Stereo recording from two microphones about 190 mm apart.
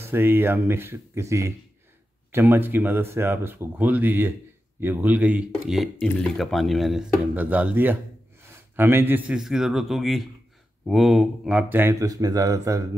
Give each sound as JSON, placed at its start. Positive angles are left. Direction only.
{"t": 0.0, "sound": "speech", "side_deg": -10}